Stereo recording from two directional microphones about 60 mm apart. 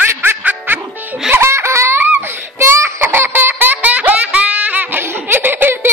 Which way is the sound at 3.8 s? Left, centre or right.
Right.